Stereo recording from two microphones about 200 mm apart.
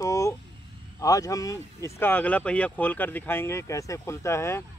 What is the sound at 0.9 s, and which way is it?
Speech, 15° left (ahead or behind).